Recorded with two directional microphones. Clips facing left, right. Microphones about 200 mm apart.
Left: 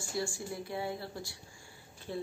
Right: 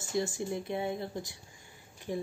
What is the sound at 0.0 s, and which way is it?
Speech, 20° right (ahead or behind).